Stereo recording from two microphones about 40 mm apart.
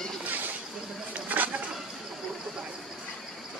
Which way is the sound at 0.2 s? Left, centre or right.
Right.